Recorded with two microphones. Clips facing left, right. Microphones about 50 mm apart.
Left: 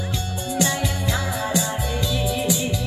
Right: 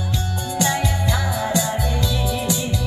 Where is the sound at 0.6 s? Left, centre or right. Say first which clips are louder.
Right 2 dB; centre.